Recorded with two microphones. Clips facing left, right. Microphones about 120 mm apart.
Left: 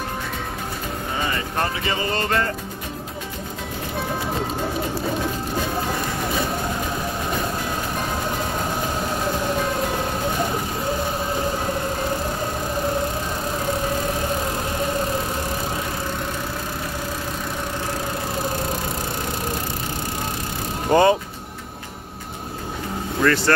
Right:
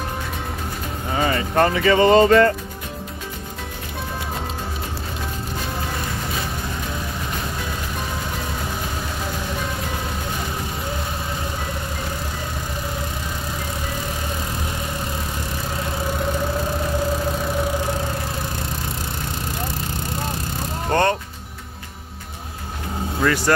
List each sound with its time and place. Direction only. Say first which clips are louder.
1.6 s music: right 10 dB; 70° right (ahead or behind)
20.9 s music: left 4 dB; 5° left (ahead or behind)
23.2 s speech: left 1 dB; 10° right (ahead or behind)